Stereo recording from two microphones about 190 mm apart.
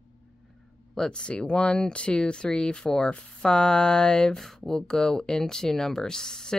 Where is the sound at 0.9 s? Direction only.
5° left (ahead or behind).